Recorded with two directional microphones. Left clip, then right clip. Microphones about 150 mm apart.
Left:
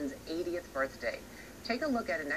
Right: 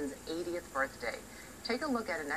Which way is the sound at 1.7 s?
35° right (ahead or behind).